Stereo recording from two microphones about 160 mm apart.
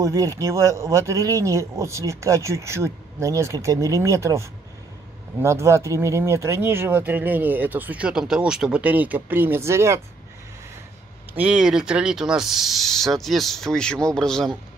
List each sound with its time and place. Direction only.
0.0 s a man's voice: 20° right (ahead or behind)
11.3 s speech: 5° right (ahead or behind)